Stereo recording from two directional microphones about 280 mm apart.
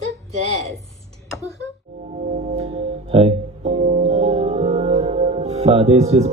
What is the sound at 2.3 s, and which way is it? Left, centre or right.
Music, right.